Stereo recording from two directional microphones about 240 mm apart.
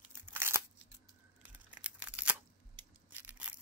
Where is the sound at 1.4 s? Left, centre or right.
Centre.